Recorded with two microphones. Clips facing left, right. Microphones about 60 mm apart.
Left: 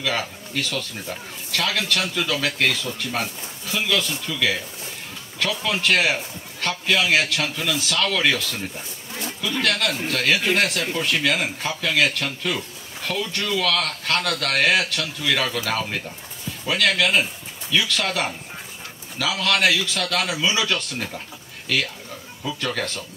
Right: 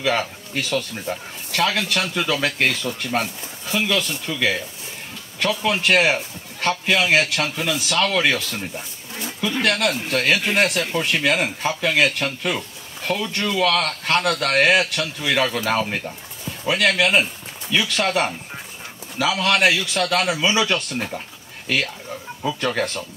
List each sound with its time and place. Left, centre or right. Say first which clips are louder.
0.0 s a man's voice: right 4 dB; centre
3.7 s a man's voice: right 2 dB; centre
5.4 s a man's voice: right 3 dB; centre